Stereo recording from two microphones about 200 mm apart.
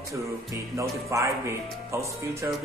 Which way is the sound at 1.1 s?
15° right (ahead or behind).